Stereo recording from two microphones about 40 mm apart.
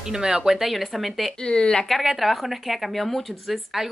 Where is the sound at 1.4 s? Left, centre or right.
Left.